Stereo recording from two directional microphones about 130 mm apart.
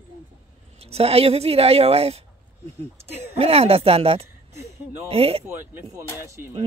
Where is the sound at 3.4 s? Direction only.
50° right (ahead or behind).